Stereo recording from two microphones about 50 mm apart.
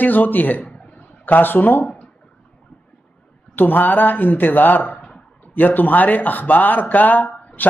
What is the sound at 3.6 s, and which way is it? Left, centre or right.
Speech, left.